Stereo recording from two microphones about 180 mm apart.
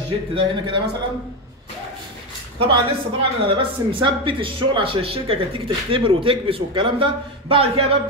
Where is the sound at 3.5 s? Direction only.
30° right (ahead or behind).